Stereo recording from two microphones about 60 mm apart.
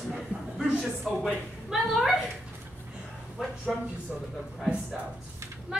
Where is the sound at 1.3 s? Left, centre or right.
Centre.